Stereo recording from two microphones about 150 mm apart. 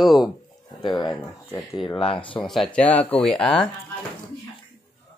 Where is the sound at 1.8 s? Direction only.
35° left (ahead or behind).